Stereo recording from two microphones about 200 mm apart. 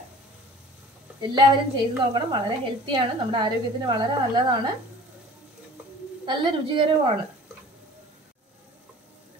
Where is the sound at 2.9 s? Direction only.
25° right (ahead or behind).